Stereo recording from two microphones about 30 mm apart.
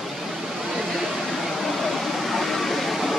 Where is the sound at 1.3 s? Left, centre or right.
Centre.